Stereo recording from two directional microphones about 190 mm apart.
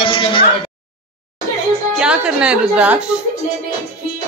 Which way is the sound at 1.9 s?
5° right (ahead or behind).